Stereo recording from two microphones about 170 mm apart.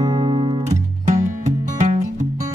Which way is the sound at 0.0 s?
20° right (ahead or behind).